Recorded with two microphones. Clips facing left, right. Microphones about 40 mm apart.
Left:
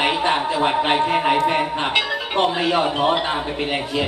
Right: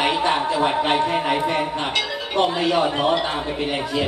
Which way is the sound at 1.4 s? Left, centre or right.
Left.